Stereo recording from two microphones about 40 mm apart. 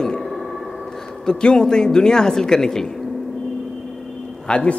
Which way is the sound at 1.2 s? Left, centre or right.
Centre.